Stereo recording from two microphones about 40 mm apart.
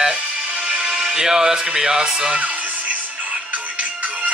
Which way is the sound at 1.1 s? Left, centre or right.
Centre.